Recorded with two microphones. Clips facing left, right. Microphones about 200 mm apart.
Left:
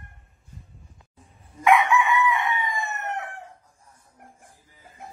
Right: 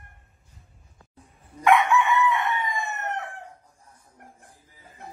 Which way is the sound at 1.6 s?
Centre (ahead or behind).